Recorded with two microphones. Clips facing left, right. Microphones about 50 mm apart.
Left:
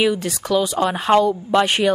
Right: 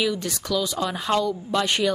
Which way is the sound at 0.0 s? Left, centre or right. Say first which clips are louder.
Left 6 dB; left.